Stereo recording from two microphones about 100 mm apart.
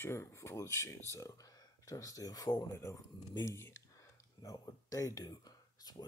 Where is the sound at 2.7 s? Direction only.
30° left (ahead or behind).